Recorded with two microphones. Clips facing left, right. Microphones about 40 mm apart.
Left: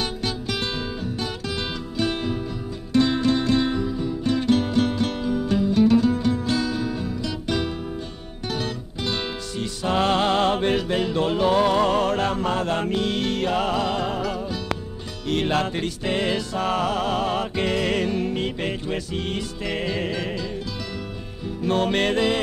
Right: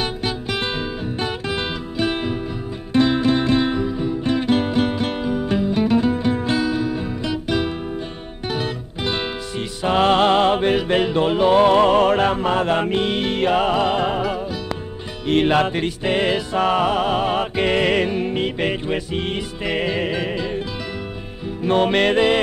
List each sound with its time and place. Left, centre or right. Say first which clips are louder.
0.0 s music: right 3 dB; centre
6.6 s music: right 4 dB; centre
21.6 s music: right 5 dB; right